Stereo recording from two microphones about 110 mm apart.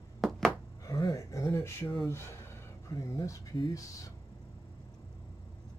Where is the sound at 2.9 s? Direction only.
30° left (ahead or behind).